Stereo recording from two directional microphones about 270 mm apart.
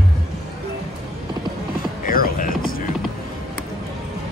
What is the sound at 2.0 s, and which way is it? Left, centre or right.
Music, left.